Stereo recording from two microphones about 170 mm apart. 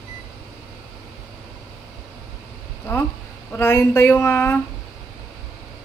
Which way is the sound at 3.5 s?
15° left (ahead or behind).